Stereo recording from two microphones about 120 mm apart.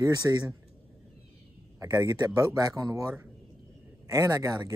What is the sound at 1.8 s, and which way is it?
Speech, 30° right (ahead or behind).